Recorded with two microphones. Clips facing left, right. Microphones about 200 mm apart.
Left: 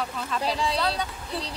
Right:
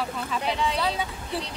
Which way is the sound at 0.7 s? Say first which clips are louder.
Even; 5° right (ahead or behind).